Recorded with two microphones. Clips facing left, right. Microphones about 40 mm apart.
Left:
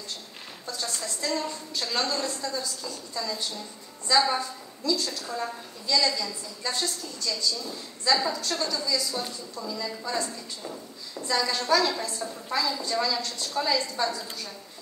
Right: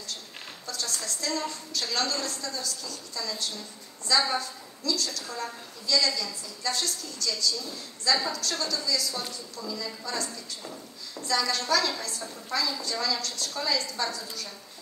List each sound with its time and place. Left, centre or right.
0.7 s a woman's voice: left
9.2 s a woman's voice: centre
9.8 s a woman's voice: left